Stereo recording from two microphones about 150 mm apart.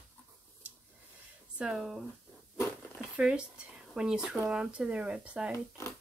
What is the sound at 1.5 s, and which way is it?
Speech, 5° right (ahead or behind).